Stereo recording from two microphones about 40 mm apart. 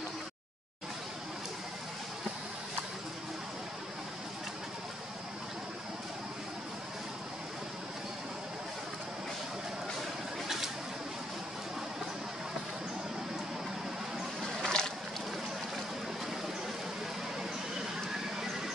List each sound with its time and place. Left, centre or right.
14.6 s boat: centre